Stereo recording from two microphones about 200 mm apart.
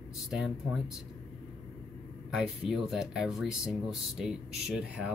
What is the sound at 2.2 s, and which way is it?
Speech, 5° right (ahead or behind).